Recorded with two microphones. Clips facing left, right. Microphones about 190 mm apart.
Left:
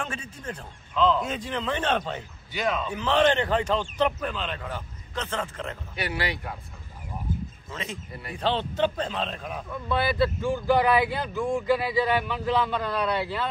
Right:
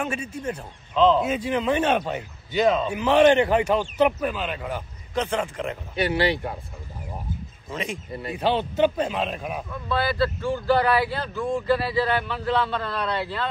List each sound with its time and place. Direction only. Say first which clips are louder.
0.0 s a man's voice: right 6 dB; 10° right (ahead or behind)
0.9 s speech: right 5 dB; 25° right (ahead or behind)
1.2 s a man's voice: right 6 dB; 10° right (ahead or behind)
2.5 s speech: right 7 dB; 25° right (ahead or behind)
2.9 s a man's voice: right 4 dB; 10° right (ahead or behind)
6.0 s speech: right 8 dB; 25° right (ahead or behind)
7.7 s a man's voice: right 6 dB; 15° right (ahead or behind)
8.1 s speech: right 7 dB; 25° right (ahead or behind)
8.4 s a man's voice: right 4 dB; 10° right (ahead or behind)
9.7 s speech: even; 20° left (ahead or behind)